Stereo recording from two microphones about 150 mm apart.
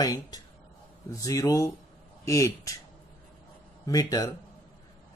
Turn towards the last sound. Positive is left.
turn(degrees=25)  # may be behind; listen again after turning